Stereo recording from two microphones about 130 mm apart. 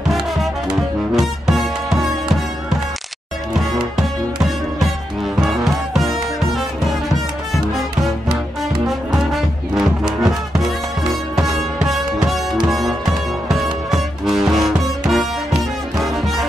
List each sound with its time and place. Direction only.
0.1 s music: centre (ahead or behind)
5.5 s music: centre (ahead or behind)
8.8 s brass instrument: 5° right (ahead or behind)
12.3 s music: centre (ahead or behind)